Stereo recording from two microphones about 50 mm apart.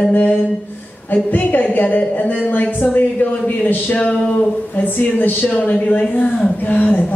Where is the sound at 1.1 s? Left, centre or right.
Left.